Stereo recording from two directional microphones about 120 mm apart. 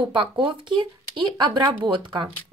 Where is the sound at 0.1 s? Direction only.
40° right (ahead or behind).